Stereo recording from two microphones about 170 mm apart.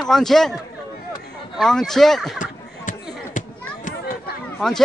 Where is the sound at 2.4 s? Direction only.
50° left (ahead or behind).